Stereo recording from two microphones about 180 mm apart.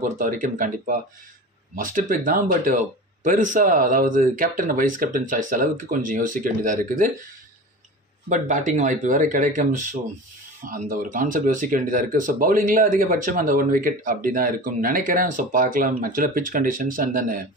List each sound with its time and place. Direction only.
0.0 s speech: 50° right (ahead or behind)
8.3 s speech: 45° right (ahead or behind)